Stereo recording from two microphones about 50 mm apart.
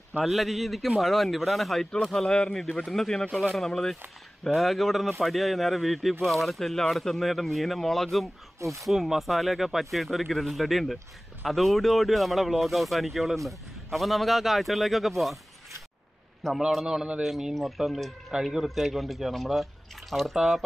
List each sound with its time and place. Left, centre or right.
0.2 s speech: centre
2.2 s speech: centre
8.5 s speech: right
8.8 s speech: centre
16.4 s speech: centre
17.2 s speech: centre